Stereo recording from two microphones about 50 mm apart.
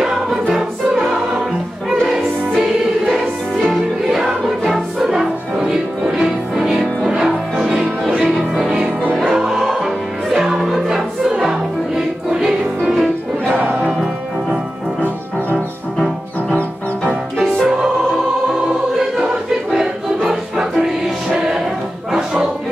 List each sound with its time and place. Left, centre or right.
0.0 s choir: centre
2.0 s music: centre
8.4 s music: centre
13.6 s music: right
17.1 s music: centre
18.5 s choir: centre
20.2 s music: centre